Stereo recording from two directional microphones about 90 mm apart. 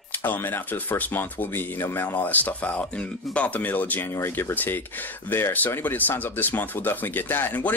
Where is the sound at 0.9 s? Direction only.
20° left (ahead or behind).